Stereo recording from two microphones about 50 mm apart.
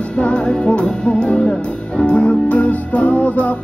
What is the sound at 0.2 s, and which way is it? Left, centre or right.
Music, left.